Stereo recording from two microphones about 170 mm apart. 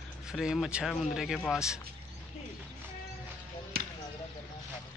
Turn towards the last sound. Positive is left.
turn(degrees=-65)  # may be behind; listen again after turning